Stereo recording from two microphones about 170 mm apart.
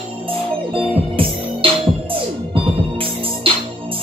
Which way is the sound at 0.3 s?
30° right (ahead or behind).